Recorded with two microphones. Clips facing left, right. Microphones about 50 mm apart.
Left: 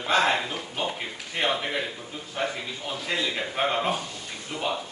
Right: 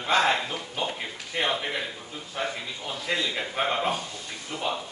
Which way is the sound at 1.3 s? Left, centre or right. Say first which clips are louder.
Left 1 dB; centre.